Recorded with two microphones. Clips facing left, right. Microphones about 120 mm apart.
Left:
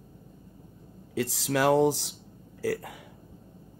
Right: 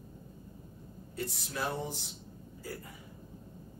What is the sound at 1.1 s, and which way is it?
Speech, 90° left.